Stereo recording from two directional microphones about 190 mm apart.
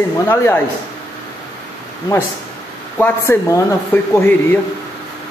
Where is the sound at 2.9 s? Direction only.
10° left (ahead or behind).